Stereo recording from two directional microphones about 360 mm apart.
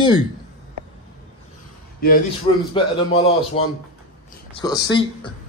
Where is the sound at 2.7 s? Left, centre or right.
Centre.